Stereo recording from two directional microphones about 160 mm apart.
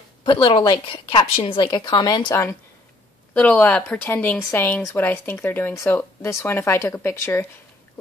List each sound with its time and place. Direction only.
0.2 s a woman's voice: 30° left (ahead or behind)
3.3 s speech: 10° left (ahead or behind)